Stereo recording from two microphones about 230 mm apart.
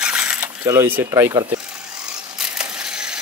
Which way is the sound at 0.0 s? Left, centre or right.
Centre.